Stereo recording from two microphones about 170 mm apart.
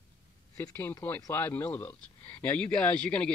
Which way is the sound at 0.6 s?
15° left (ahead or behind).